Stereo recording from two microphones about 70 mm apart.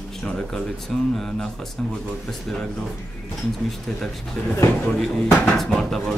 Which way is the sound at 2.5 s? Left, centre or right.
Centre.